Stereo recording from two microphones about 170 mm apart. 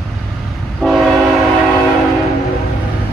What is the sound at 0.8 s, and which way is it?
Train, centre (ahead or behind).